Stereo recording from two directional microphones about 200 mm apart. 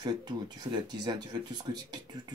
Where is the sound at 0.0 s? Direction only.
20° right (ahead or behind).